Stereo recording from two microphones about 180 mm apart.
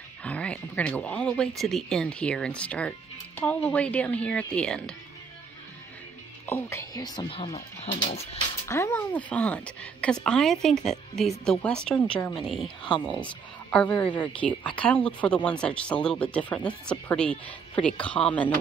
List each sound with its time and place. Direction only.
0.2 s a woman's voice: 5° left (ahead or behind)
6.4 s speech: 15° left (ahead or behind); by 8.4 s 35° left (ahead or behind)
8.6 s a woman's voice: 15° left (ahead or behind)